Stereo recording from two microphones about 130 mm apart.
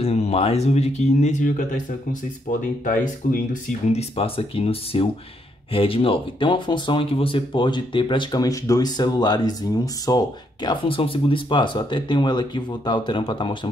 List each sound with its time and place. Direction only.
0.0 s speech: 50° left (ahead or behind); by 1.7 s 75° left (ahead or behind)
2.8 s speech: 90° left
3.9 s speech: 50° left (ahead or behind)